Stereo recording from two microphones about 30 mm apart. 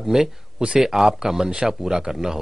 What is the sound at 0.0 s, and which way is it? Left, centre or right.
Speech, centre.